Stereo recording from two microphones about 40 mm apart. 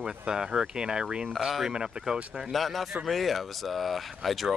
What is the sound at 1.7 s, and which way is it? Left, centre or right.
Speech, centre.